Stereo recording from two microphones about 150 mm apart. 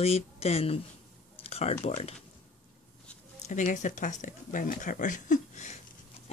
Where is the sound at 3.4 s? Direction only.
55° left (ahead or behind).